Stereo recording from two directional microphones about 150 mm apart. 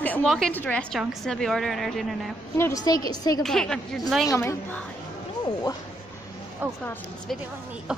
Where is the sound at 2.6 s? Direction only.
20° left (ahead or behind).